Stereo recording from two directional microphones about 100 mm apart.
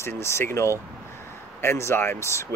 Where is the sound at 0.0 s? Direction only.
25° left (ahead or behind).